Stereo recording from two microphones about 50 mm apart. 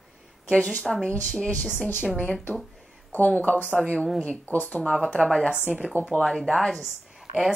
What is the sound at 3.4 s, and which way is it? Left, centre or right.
Speech, left.